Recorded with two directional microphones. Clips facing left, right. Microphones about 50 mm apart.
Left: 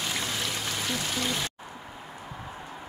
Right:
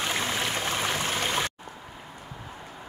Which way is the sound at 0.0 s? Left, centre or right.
Right.